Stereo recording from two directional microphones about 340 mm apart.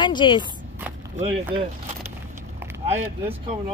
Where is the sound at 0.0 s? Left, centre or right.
Centre.